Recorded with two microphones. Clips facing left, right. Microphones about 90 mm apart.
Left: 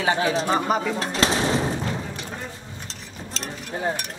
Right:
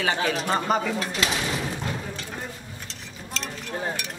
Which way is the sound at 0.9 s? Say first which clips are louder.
Left 4 dB; 35° left (ahead or behind).